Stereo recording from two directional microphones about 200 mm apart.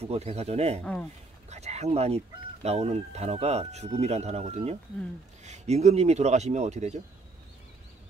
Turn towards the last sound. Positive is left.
turn(degrees=-35)  # may be behind; listen again after turning